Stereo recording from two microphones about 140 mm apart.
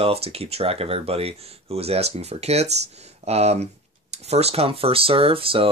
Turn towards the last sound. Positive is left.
turn(degrees=-40)  # may be behind; listen again after turning